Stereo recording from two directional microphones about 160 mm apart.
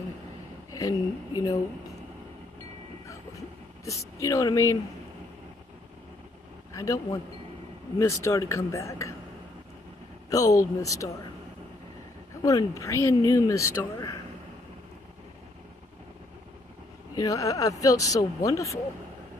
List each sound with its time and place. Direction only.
0.7 s a woman's voice: 20° left (ahead or behind)
3.1 s a sound: 20° left (ahead or behind)
6.7 s a man's voice: 20° left (ahead or behind)
10.3 s speech: 20° left (ahead or behind)
12.4 s speech: 20° left (ahead or behind)
17.1 s speech: 20° left (ahead or behind)